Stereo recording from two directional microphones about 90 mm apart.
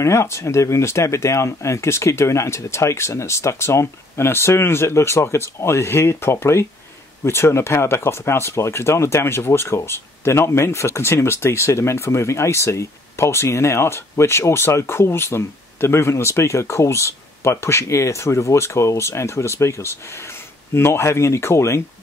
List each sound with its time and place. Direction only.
0.0 s speech: 30° left (ahead or behind)